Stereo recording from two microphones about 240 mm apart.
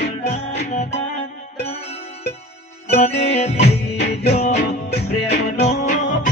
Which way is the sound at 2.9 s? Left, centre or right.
Left.